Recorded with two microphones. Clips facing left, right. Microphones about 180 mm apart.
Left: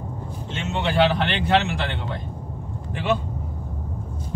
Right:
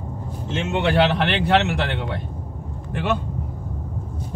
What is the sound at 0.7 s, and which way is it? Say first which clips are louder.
Speech: right 1 dB; 65° right (ahead or behind).